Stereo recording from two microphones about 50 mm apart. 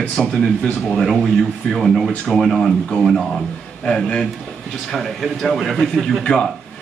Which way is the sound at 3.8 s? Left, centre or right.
Centre.